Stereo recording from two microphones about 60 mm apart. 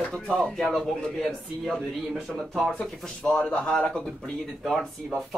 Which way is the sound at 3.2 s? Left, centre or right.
Centre.